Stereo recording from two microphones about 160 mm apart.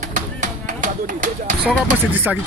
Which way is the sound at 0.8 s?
50° right (ahead or behind).